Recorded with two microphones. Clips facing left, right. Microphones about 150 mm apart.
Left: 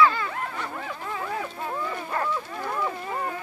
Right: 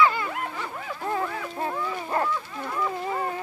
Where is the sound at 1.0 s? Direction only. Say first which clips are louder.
Right 4 dB; 45° right (ahead or behind).